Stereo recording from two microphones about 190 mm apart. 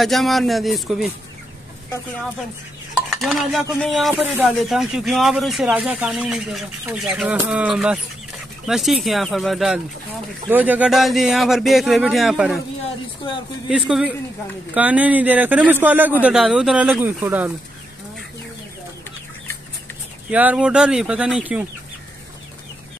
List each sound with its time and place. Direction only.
0.0 s speech: centre (ahead or behind)
3.2 s a man's voice: centre (ahead or behind)
13.2 s speech: 25° left (ahead or behind)
13.7 s a man's voice: 5° right (ahead or behind)
20.2 s speech: 5° right (ahead or behind)